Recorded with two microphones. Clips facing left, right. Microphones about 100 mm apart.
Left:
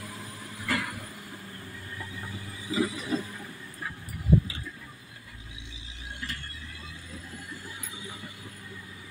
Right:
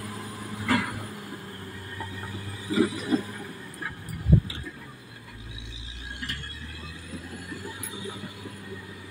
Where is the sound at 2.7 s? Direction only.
55° right (ahead or behind).